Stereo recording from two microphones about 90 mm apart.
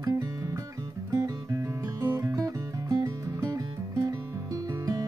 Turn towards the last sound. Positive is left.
turn(degrees=-40)  # may be behind; listen again after turning